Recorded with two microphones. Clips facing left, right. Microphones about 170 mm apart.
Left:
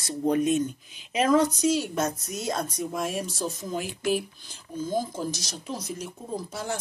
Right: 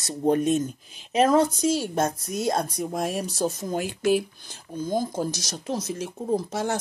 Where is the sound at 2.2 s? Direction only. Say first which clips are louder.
Right 5 dB; 55° right (ahead or behind); by 3.3 s 40° right (ahead or behind).